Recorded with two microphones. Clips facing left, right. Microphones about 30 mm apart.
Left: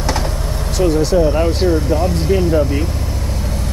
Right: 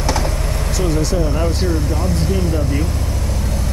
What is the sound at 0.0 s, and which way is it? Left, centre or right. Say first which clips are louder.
Vehicle: even; centre.